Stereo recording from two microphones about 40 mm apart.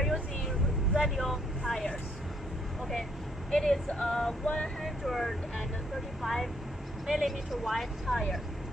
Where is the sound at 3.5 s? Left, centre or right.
Centre.